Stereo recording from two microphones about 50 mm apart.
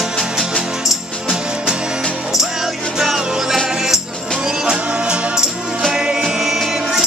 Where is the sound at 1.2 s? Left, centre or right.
Centre.